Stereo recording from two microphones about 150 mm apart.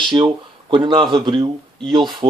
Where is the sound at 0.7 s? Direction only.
35° right (ahead or behind).